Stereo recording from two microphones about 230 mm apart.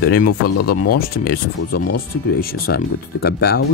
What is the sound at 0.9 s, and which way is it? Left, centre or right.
Speech, left.